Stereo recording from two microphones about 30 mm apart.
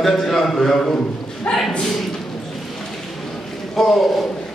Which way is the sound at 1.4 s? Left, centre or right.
Left.